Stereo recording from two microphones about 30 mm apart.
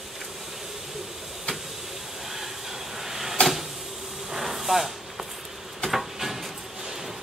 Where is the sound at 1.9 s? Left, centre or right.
Centre.